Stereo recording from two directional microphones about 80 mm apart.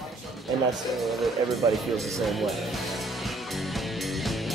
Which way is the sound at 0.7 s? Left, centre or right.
Centre.